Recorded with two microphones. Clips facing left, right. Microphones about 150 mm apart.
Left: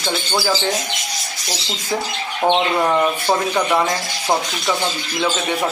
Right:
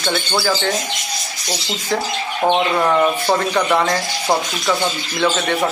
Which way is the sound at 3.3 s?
10° left (ahead or behind).